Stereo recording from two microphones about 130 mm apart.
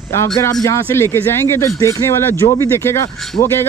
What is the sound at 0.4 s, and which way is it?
Speech, 25° left (ahead or behind).